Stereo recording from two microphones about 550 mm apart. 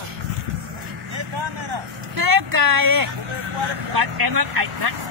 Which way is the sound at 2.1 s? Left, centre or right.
Right.